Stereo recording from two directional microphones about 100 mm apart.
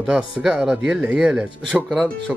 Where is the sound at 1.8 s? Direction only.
5° left (ahead or behind).